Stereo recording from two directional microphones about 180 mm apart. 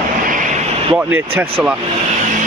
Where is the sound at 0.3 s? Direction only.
45° right (ahead or behind).